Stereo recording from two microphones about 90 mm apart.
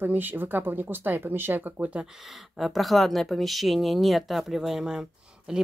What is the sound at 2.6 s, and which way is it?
Speech, centre (ahead or behind).